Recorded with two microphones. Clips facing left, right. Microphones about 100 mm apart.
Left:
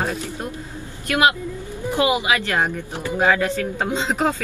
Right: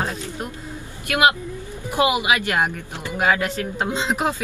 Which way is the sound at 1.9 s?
20° right (ahead or behind).